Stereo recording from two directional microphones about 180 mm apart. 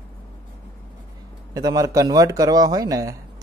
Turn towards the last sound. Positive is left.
turn(degrees=-20)  # may be behind; listen again after turning